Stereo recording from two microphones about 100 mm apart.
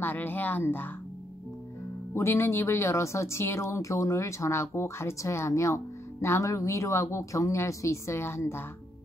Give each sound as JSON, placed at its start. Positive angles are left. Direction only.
{"t": 0.0, "sound": "speech", "side_deg": 20}
{"t": 2.1, "sound": "speech", "side_deg": 30}